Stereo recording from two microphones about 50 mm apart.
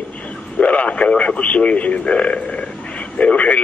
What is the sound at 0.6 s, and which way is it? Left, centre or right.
Speech, left.